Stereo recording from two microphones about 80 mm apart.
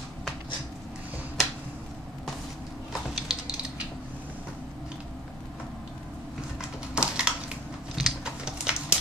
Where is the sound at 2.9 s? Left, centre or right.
Centre.